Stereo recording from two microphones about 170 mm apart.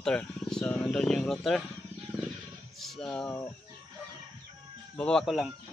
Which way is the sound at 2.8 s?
5° left (ahead or behind).